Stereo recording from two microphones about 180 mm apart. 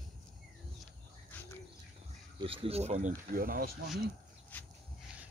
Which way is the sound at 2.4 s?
30° right (ahead or behind).